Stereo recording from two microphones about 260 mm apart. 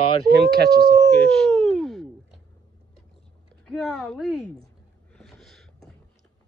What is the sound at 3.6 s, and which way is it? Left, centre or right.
Speech, centre.